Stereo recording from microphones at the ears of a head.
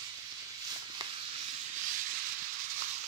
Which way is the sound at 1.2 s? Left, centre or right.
Right.